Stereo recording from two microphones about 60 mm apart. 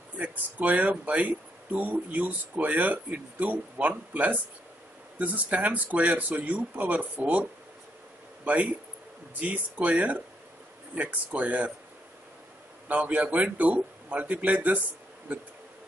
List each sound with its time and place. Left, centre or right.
0.2 s speech: right
9.3 s speech: right
12.8 s speech: right